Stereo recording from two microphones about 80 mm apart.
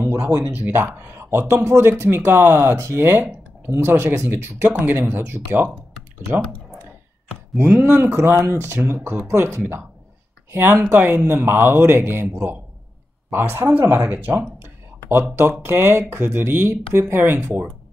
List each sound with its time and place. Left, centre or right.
0.0 s a sound: right
0.3 s speech: right
7.8 s speech: right